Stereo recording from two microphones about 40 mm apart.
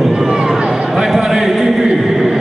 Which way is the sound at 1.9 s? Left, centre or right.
Centre.